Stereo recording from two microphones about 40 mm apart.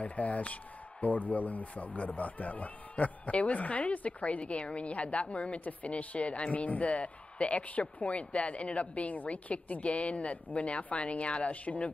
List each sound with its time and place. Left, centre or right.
0.0 s a man's voice: left
5.6 s a man's voice: left